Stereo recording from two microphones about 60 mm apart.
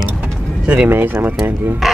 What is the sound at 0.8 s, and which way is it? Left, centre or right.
Speech, right.